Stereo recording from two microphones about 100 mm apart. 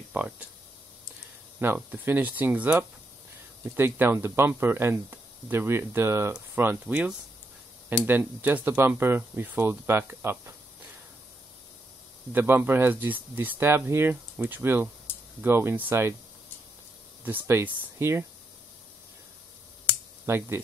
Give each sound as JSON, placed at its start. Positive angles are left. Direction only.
{"t": 0.1, "sound": "speech", "side_deg": -15}
{"t": 1.8, "sound": "speech", "side_deg": -20}
{"t": 6.9, "sound": "speech", "side_deg": -10}
{"t": 12.3, "sound": "speech", "side_deg": -20}
{"t": 17.2, "sound": "speech", "side_deg": -20}
{"t": 20.2, "sound": "speech", "side_deg": -25}